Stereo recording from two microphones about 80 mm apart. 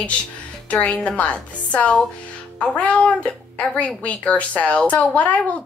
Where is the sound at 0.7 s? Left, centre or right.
Centre.